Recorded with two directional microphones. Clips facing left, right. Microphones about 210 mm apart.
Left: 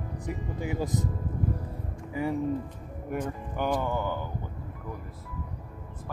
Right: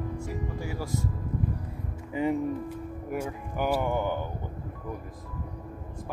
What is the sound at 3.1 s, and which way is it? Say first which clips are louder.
Speech: left 1 dB; 5° right (ahead or behind).